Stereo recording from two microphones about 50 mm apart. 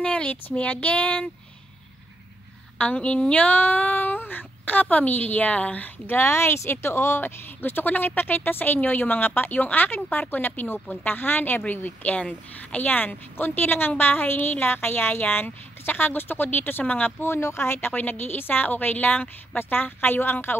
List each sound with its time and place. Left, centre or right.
0.0 s a sound: left
2.8 s speech: left
6.0 s a woman's voice: left
12.2 s a sound: left
12.8 s a woman's voice: left
17.3 s speech: left
17.7 s a woman's voice: left